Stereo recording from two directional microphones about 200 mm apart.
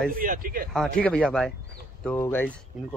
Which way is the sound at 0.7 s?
5° left (ahead or behind).